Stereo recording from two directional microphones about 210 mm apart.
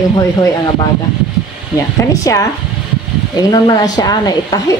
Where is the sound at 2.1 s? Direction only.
15° left (ahead or behind).